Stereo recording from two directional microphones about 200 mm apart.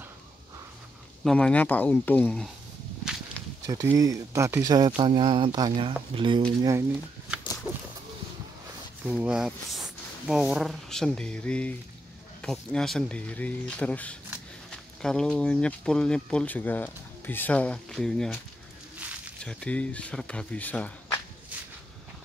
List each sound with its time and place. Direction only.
1.2 s speech: 5° left (ahead or behind)
3.6 s speech: 15° right (ahead or behind)
7.7 s a sound: 10° right (ahead or behind)
9.1 s speech: 5° right (ahead or behind)
19.4 s speech: 5° left (ahead or behind)